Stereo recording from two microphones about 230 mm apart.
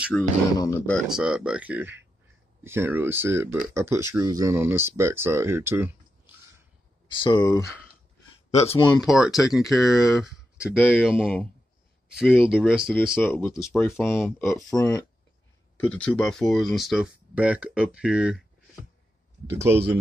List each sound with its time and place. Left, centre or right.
0.1 s speech: centre
0.6 s speech: centre
7.1 s speech: centre
9.0 s speech: centre
13.2 s speech: centre
19.5 s speech: centre